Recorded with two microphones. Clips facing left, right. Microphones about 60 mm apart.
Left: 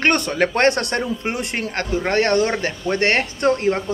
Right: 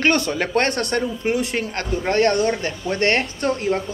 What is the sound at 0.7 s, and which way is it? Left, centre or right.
Speech, left.